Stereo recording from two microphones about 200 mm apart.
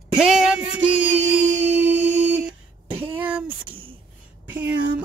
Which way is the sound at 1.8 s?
65° right (ahead or behind).